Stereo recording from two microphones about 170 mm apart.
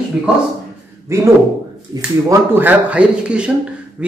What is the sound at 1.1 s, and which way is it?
Speech, 15° right (ahead or behind).